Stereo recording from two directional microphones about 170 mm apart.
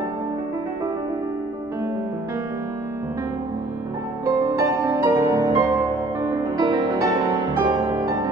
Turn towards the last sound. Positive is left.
turn(degrees=-25)  # may be behind; listen again after turning